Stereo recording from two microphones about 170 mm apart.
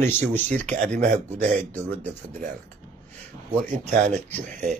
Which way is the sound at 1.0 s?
40° right (ahead or behind).